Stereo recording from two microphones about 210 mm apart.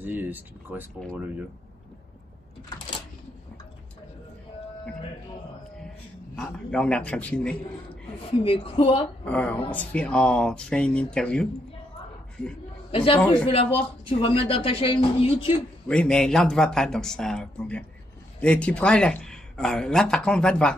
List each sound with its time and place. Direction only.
0.0 s speech: 10° right (ahead or behind)
6.3 s speech: 5° left (ahead or behind)
8.2 s speech: 25° left (ahead or behind)
9.2 s speech: 5° left (ahead or behind)
12.9 s speech: 25° left (ahead or behind)
15.9 s speech: 5° left (ahead or behind)